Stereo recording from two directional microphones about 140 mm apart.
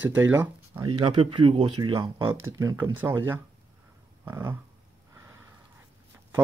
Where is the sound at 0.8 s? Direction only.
35° right (ahead or behind).